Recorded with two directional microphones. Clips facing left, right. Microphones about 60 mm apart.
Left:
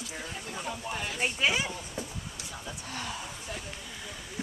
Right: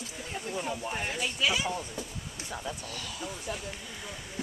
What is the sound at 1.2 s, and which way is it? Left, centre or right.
Speech, left.